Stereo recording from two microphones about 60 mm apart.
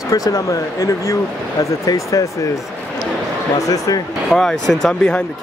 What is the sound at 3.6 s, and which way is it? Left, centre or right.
Speech, left.